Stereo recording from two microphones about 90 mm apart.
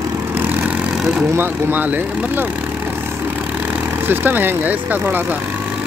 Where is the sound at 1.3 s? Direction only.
20° right (ahead or behind).